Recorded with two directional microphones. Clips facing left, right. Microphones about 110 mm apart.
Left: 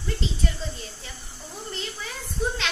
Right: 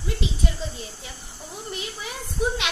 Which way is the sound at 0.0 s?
15° right (ahead or behind).